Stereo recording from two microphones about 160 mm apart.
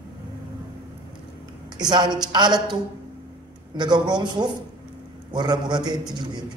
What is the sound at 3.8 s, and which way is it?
A man's voice, 25° right (ahead or behind).